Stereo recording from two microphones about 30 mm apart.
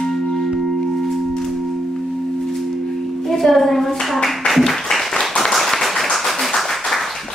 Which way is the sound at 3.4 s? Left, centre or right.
Centre.